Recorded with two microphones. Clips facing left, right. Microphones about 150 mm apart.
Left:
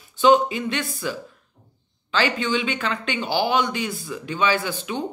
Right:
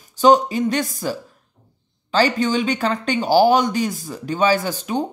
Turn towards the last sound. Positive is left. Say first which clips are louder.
# right 5 dB
turn(degrees=-40)  # may be behind; listen again after turning